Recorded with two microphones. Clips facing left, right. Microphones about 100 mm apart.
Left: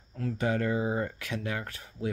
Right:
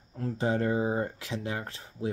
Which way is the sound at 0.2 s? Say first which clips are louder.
Right 1 dB; 30° right (ahead or behind).